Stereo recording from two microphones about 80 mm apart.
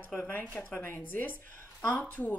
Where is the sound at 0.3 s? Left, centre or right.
Left.